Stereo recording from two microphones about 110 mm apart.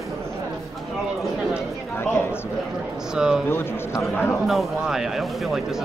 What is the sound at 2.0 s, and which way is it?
Speech, 20° left (ahead or behind).